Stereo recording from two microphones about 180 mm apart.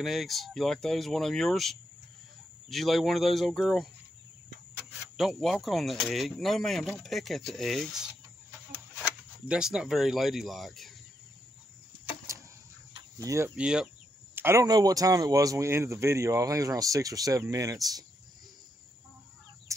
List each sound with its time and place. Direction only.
0.0 s speech: centre (ahead or behind)
5.1 s speech: centre (ahead or behind)
9.5 s speech: 5° right (ahead or behind)
12.9 s cricket: 20° right (ahead or behind)
13.6 s speech: 5° right (ahead or behind)